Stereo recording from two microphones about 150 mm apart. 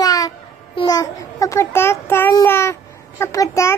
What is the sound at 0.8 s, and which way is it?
A child's voice, 25° left (ahead or behind).